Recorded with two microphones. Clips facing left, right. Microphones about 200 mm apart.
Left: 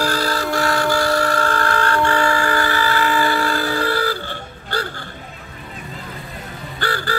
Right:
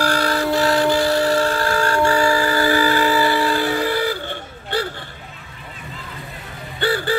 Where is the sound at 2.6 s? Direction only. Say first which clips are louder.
Right 3 dB; 15° right (ahead or behind).